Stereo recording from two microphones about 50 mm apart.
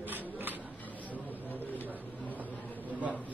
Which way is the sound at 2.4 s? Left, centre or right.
Right.